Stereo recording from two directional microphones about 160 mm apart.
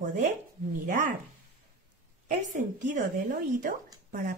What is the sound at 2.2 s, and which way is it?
A woman's voice, 50° right (ahead or behind).